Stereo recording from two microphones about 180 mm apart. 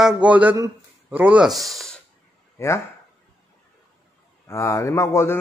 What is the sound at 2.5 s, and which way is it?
Speech, 15° left (ahead or behind).